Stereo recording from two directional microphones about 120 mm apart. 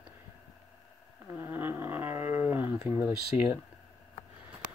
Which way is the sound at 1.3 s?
20° right (ahead or behind).